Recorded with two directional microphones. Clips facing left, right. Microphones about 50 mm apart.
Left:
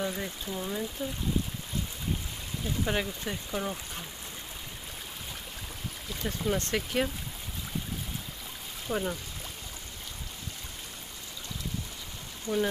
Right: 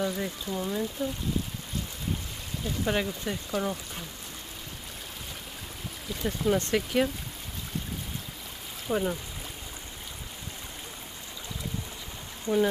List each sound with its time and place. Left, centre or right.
0.0 s speech: centre
2.6 s speech: centre
6.0 s speech: centre
8.8 s speech: centre
12.5 s speech: right